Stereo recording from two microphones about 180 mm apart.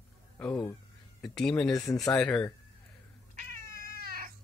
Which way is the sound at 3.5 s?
55° right (ahead or behind).